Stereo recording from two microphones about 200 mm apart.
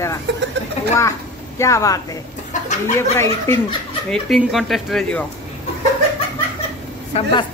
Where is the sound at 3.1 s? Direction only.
10° left (ahead or behind).